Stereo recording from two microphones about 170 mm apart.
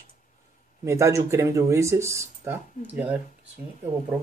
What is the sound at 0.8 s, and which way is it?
Speech, 15° right (ahead or behind).